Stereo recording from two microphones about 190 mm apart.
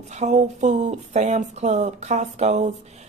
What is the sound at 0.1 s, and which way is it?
Speech, 35° right (ahead or behind).